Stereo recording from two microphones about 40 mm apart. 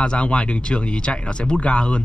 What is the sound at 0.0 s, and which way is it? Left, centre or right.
Speech, left.